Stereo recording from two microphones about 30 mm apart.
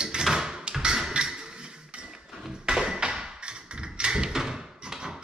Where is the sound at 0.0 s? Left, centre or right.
Centre.